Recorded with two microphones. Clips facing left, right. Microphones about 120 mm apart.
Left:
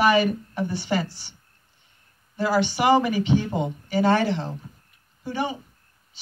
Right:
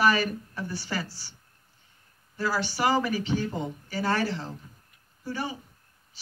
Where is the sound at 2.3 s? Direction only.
20° left (ahead or behind).